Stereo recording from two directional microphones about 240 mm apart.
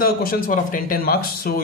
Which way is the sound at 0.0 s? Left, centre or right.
Left.